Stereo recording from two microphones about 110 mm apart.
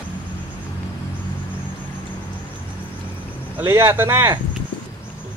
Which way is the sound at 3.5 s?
20° right (ahead or behind).